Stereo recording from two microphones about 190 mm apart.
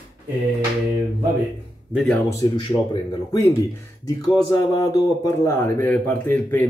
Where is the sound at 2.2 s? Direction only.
20° left (ahead or behind).